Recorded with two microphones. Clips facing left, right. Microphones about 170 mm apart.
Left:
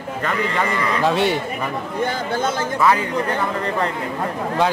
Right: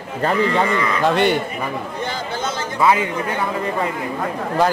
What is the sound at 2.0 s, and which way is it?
Speech, 55° left (ahead or behind).